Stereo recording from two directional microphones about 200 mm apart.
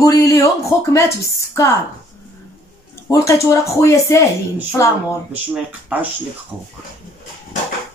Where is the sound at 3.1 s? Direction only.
15° left (ahead or behind).